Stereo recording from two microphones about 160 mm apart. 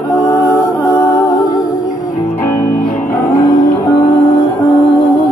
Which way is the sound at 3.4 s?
25° left (ahead or behind).